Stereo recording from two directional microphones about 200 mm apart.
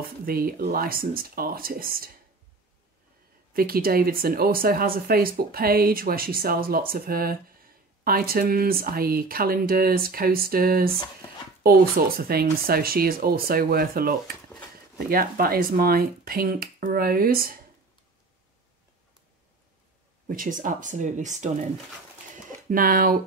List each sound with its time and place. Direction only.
0.2 s speech: 45° right (ahead or behind)
3.5 s speech: 50° right (ahead or behind)
20.2 s speech: 40° right (ahead or behind)
22.7 s speech: 45° right (ahead or behind)